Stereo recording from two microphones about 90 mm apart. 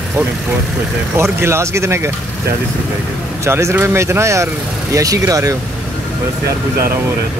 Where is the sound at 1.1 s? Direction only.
30° right (ahead or behind).